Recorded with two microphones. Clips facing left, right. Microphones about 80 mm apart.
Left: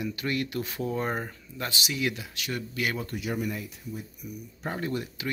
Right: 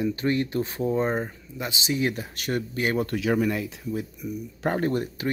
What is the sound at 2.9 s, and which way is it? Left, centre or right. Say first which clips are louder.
Speech: right 8 dB; right.